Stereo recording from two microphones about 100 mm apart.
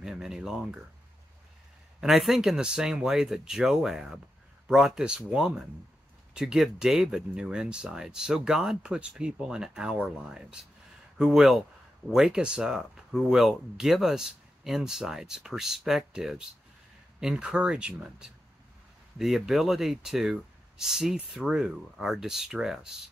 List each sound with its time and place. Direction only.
0.0 s speech: 5° right (ahead or behind)
2.0 s speech: 5° right (ahead or behind)